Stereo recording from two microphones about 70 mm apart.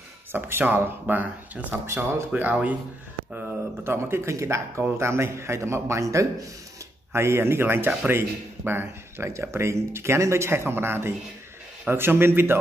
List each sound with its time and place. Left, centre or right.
0.3 s speech: right
3.3 s speech: right